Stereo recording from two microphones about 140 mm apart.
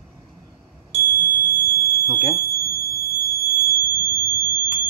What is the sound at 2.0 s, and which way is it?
Smoke detector, 20° left (ahead or behind).